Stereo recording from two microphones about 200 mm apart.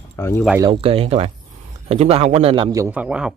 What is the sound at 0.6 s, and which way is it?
A man's voice, 25° right (ahead or behind).